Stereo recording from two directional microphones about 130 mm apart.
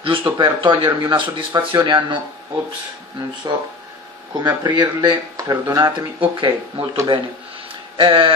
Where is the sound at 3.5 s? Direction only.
30° right (ahead or behind).